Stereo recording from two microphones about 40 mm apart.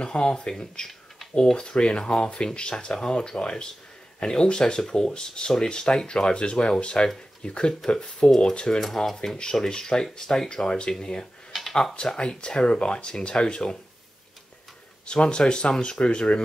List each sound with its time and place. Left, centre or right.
0.0 s speech: left
8.8 s speech: centre
11.5 s a sound: centre
12.2 s speech: left
15.0 s speech: left